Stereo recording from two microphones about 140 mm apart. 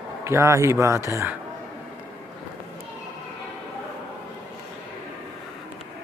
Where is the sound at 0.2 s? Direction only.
20° right (ahead or behind).